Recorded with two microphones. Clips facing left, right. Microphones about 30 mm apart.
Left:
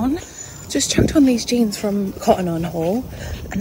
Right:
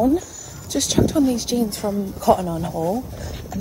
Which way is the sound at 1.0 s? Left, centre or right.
Left.